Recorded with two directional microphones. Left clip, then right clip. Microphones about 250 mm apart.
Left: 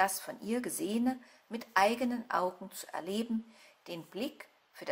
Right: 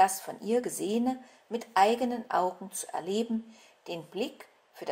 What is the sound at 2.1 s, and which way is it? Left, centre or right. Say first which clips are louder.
Speech: right 4 dB; left.